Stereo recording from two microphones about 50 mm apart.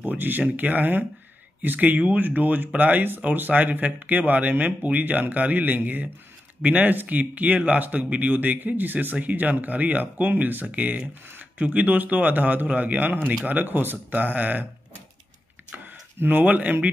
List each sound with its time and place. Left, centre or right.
0.0 s speech: right
11.2 s a sound: right
11.6 s speech: right
16.2 s speech: right